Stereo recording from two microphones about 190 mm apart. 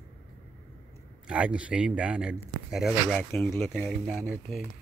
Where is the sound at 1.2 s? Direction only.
5° right (ahead or behind).